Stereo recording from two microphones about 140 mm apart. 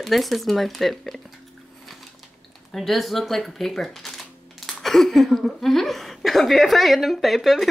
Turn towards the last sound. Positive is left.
turn(degrees=0)  # may be behind; listen again after turning